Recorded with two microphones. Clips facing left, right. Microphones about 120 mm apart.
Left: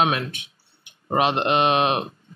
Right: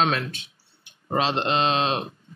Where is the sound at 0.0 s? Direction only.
15° left (ahead or behind).